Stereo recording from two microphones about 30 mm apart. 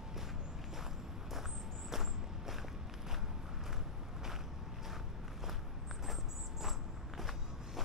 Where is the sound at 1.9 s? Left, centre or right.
Centre.